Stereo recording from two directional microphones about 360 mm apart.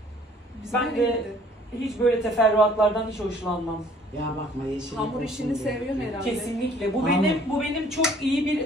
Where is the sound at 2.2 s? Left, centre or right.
Centre.